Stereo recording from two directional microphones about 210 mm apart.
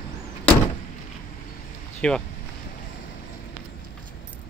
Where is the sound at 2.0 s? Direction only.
5° left (ahead or behind).